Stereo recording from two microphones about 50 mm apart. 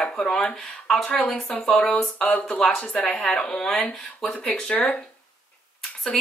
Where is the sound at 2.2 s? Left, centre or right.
Left.